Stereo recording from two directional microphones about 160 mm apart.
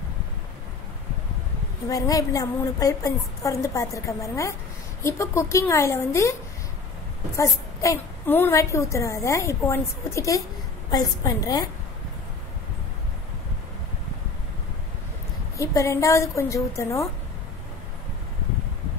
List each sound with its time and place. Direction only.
1.9 s a woman's voice: 20° left (ahead or behind)
7.3 s a woman's voice: 20° left (ahead or behind)
15.5 s a woman's voice: 20° left (ahead or behind)